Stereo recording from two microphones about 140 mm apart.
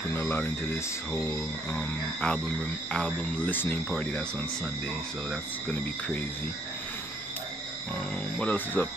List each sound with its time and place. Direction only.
0.1 s speech: 15° left (ahead or behind)
5.7 s speech: 10° left (ahead or behind)
8.4 s speech: 15° left (ahead or behind)